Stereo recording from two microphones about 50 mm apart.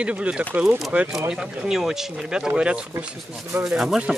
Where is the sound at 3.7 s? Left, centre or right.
Centre.